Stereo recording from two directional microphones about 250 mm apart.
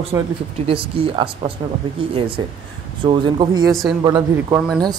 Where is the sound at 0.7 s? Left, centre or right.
Right.